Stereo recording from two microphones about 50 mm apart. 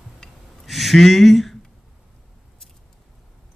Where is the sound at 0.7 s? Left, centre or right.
Centre.